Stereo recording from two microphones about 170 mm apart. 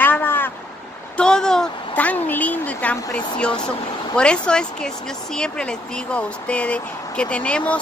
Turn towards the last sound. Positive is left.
turn(degrees=5)  # may be behind; listen again after turning